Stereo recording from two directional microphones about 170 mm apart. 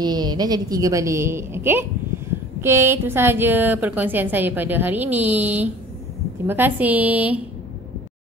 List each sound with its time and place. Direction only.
0.0 s a woman's voice: 25° right (ahead or behind); by 7.4 s 10° right (ahead or behind)